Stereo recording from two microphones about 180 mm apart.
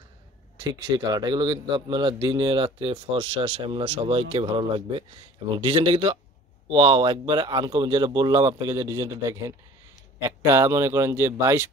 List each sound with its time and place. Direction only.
0.6 s a man's voice: 20° right (ahead or behind)